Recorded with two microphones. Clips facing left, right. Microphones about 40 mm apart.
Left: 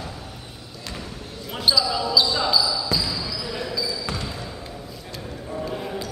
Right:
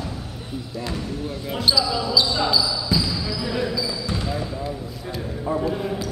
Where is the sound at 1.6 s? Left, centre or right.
Centre.